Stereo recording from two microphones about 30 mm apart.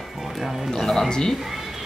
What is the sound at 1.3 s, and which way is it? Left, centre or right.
Speech, centre.